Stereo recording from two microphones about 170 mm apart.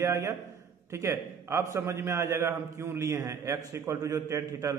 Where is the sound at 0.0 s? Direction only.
15° right (ahead or behind).